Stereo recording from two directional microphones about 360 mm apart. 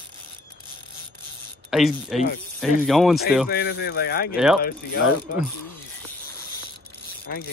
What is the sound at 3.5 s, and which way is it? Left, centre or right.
Speech, left.